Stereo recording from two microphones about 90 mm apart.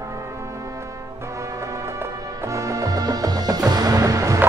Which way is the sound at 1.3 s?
35° right (ahead or behind).